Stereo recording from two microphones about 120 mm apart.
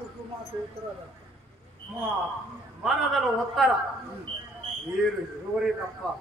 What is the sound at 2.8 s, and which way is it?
Speech, centre (ahead or behind).